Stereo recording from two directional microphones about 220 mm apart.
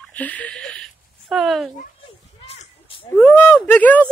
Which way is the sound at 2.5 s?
25° left (ahead or behind).